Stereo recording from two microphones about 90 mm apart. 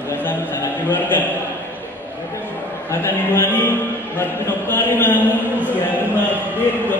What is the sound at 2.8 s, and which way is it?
Music, 25° left (ahead or behind).